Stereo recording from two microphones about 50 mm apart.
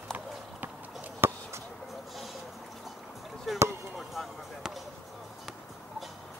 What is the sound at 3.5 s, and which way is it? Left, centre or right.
Basketball bounce, centre.